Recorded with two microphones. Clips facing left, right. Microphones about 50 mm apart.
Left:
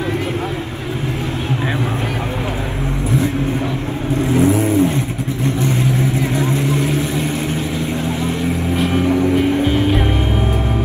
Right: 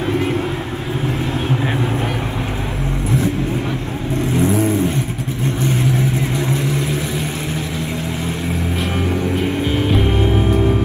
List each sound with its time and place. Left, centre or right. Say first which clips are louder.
4.4 s vehicle: left 2 dB; left
6.1 s vehicle: left 2 dB; left